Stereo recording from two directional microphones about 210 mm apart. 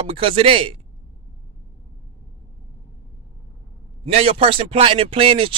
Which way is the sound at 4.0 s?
25° right (ahead or behind).